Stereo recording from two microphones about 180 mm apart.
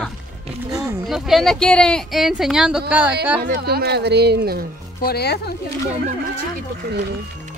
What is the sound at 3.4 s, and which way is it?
Speech, 55° right (ahead or behind).